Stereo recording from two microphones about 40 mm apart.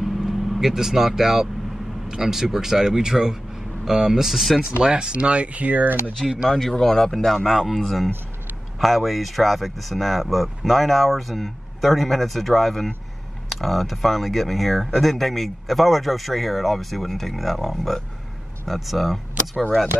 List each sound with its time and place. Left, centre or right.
0.0 s vehicle: centre
2.0 s speech: centre
4.7 s speech: right
6.5 s speech: centre